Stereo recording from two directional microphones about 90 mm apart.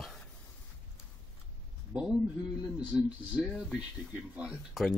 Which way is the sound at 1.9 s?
20° right (ahead or behind).